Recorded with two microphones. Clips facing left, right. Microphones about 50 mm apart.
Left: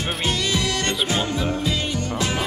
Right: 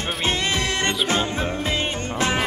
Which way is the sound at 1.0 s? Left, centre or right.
Right.